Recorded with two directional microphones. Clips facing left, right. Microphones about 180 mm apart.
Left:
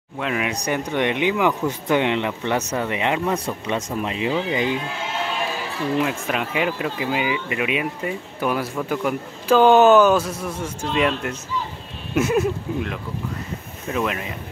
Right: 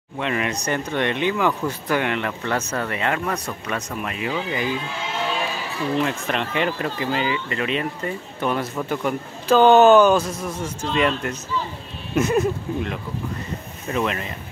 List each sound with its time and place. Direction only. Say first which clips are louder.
0.2 s speech: even; 5° left (ahead or behind); by 4.7 s 20° left (ahead or behind)
5.9 s speech: even; 5° left (ahead or behind)